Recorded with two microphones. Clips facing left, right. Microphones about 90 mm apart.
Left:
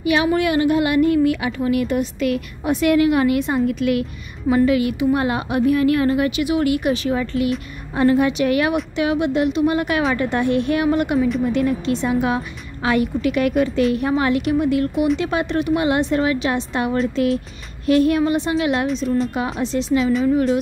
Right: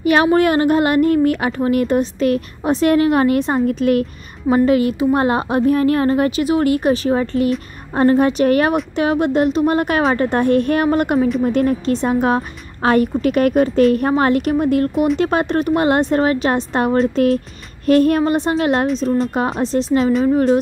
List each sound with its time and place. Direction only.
0.0 s a woman's voice: 45° right (ahead or behind)